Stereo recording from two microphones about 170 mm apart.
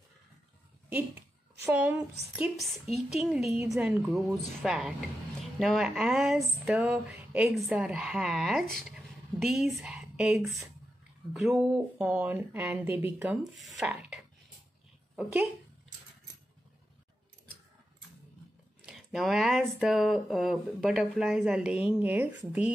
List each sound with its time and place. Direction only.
1.6 s speech: 10° right (ahead or behind)
11.7 s speech: 10° right (ahead or behind)
18.9 s speech: centre (ahead or behind)